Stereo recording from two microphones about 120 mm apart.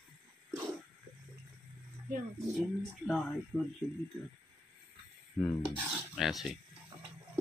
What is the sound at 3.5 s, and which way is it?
Speech, 20° right (ahead or behind).